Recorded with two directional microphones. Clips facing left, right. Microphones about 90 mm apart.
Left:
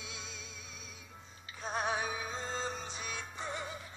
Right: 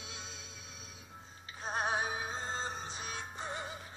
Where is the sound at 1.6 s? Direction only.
30° right (ahead or behind).